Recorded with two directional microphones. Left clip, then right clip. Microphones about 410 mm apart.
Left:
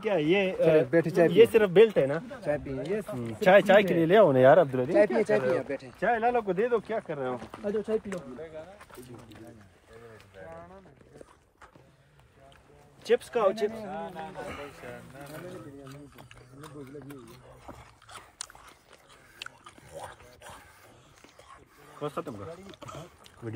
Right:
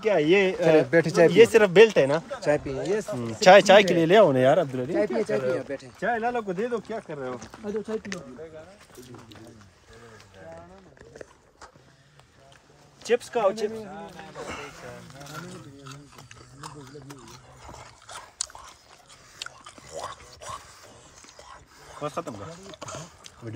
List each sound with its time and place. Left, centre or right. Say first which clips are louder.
0.0 s speech: right 5 dB; centre
0.8 s speech: right 4 dB; right
1.3 s speech: right 3 dB; centre
2.4 s speech: right 5 dB; centre
4.9 s speech: left 2 dB; left
13.0 s speech: right 2 dB; centre
13.8 s speech: left 3 dB; centre
18.0 s biting: right 7 dB; centre
19.9 s a sound: right 7 dB; centre